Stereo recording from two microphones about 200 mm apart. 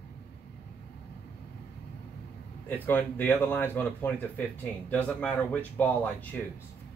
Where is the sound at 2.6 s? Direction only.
10° left (ahead or behind).